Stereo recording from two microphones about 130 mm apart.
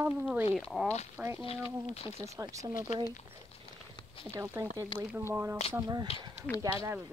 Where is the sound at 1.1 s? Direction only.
15° right (ahead or behind).